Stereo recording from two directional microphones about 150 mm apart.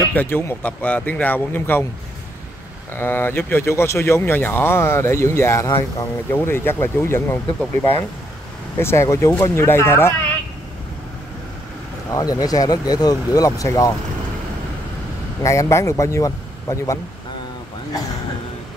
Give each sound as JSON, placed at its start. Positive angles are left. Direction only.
{"t": 0.0, "sound": "speech", "side_deg": 15}
{"t": 2.9, "sound": "speech", "side_deg": 15}
{"t": 8.7, "sound": "speech", "side_deg": 20}
{"t": 12.1, "sound": "speech", "side_deg": 25}
{"t": 15.4, "sound": "speech", "side_deg": 20}